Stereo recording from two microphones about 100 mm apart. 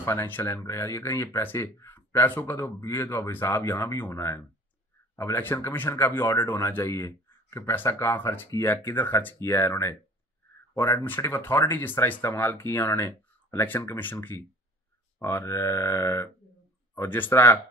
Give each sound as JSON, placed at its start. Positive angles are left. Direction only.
{"t": 0.0, "sound": "speech", "side_deg": 25}
{"t": 11.0, "sound": "speech", "side_deg": 25}